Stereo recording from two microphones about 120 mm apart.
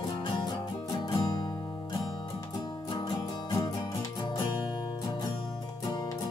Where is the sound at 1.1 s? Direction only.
35° left (ahead or behind).